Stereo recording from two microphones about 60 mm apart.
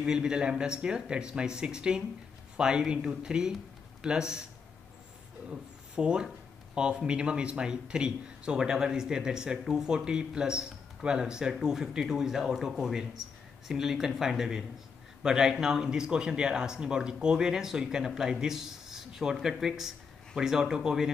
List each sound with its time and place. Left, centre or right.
0.0 s speech: centre
5.5 s speech: centre